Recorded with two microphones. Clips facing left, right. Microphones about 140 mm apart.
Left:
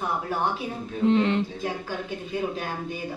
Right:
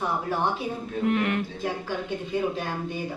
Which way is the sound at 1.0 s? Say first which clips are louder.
Left 4 dB; 25° left (ahead or behind).